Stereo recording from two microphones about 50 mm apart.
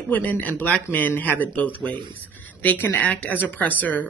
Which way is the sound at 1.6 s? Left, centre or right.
Left.